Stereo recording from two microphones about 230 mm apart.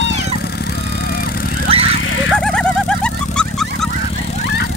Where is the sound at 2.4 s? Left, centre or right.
Centre.